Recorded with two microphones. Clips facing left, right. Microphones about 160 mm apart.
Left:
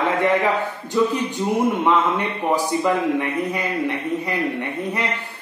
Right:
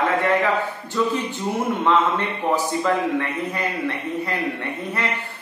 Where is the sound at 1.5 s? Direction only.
15° left (ahead or behind).